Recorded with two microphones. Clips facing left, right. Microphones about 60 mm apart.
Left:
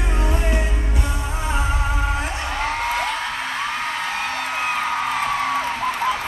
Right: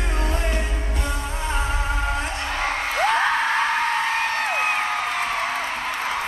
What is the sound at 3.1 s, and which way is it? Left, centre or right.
Music, right.